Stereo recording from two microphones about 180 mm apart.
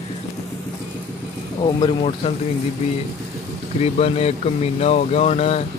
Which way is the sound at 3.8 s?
35° left (ahead or behind).